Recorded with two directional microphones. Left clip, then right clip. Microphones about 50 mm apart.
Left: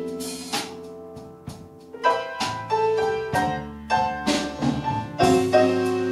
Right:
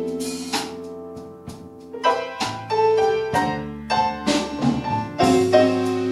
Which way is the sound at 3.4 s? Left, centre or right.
Centre.